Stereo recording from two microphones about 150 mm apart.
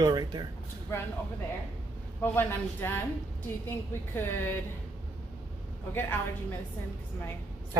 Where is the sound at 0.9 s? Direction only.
15° left (ahead or behind).